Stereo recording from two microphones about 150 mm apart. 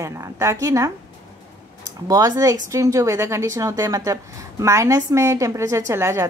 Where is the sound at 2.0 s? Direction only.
25° right (ahead or behind).